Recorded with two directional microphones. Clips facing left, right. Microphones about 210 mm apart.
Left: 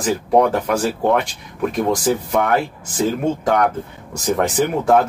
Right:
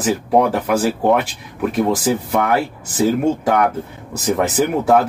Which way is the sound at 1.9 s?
5° right (ahead or behind).